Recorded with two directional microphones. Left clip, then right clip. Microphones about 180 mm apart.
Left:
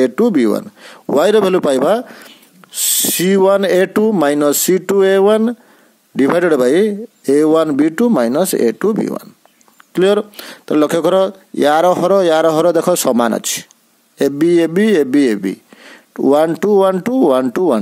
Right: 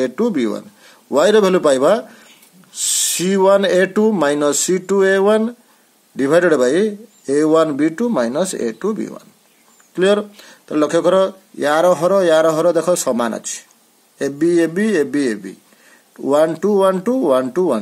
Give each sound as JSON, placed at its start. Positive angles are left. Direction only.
{"t": 0.0, "sound": "speech", "side_deg": 45}